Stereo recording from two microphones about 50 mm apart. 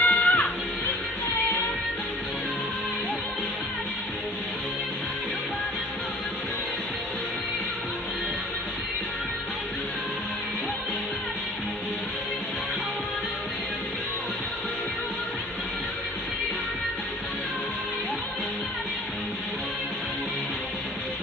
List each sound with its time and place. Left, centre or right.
0.0 s music: left